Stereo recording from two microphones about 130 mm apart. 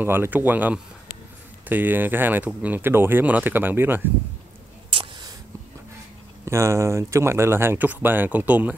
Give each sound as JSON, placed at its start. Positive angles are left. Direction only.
{"t": 0.0, "sound": "speech", "side_deg": -15}
{"t": 4.8, "sound": "a sound", "side_deg": -45}
{"t": 6.4, "sound": "speech", "side_deg": -20}